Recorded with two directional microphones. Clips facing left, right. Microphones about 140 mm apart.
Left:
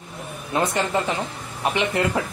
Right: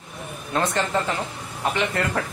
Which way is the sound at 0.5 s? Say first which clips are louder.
Left 1 dB; 10° left (ahead or behind).